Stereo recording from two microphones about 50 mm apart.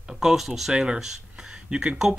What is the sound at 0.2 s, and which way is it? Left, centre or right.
Speech, centre.